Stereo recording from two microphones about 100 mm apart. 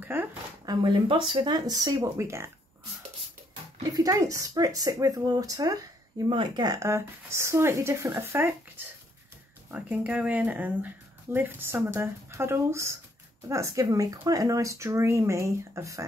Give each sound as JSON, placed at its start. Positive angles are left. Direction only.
{"t": 0.0, "sound": "speech", "side_deg": -20}
{"t": 0.7, "sound": "speech", "side_deg": -55}
{"t": 3.9, "sound": "speech", "side_deg": -35}
{"t": 6.2, "sound": "speech", "side_deg": -55}
{"t": 6.8, "sound": "speech", "side_deg": -30}
{"t": 9.7, "sound": "speech", "side_deg": -15}